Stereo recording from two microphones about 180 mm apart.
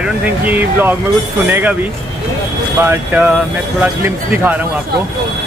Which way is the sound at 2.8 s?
10° right (ahead or behind).